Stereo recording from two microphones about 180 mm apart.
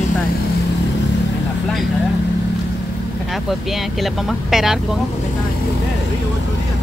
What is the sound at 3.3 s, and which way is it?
Speech, centre (ahead or behind).